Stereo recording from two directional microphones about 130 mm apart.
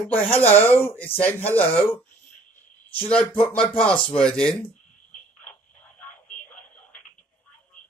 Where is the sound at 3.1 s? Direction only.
10° left (ahead or behind).